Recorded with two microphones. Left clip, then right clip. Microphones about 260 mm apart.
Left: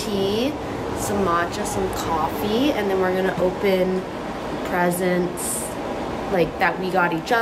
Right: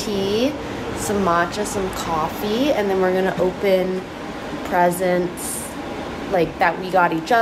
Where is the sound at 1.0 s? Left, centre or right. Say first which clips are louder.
Right 3 dB; centre.